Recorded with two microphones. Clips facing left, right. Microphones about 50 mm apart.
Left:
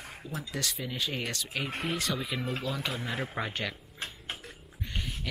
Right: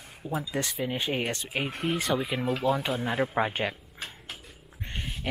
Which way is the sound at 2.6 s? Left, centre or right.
Right.